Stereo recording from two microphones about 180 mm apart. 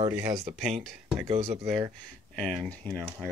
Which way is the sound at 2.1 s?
Centre (ahead or behind).